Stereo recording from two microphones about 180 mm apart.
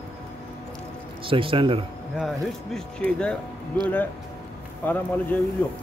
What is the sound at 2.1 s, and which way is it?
A man's voice, centre (ahead or behind).